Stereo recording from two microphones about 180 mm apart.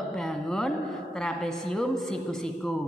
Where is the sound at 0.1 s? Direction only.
Centre (ahead or behind).